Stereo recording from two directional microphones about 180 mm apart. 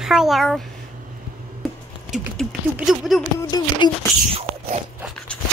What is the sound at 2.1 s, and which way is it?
Speech, centre (ahead or behind).